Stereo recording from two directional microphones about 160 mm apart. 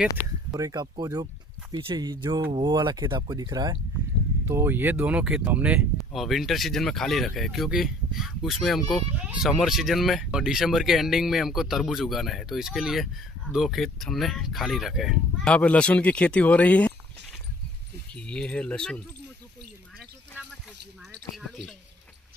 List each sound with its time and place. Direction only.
0.5 s speech: 25° right (ahead or behind)
4.5 s speech: 15° right (ahead or behind); by 16.9 s 10° left (ahead or behind)
18.1 s speech: 5° left (ahead or behind)
21.4 s speech: centre (ahead or behind)